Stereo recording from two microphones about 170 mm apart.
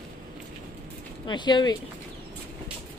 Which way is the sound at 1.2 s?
25° left (ahead or behind).